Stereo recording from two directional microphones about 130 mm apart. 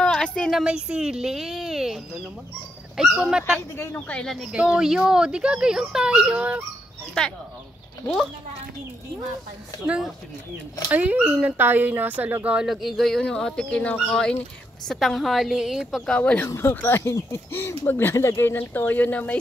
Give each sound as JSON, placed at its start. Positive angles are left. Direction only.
{"t": 0.0, "sound": "a woman's voice", "side_deg": 10}
{"t": 3.0, "sound": "speech", "side_deg": -5}
{"t": 3.7, "sound": "speech", "side_deg": 15}
{"t": 7.2, "sound": "speech", "side_deg": 5}
{"t": 9.8, "sound": "speech", "side_deg": -5}
{"t": 16.1, "sound": "speech", "side_deg": 10}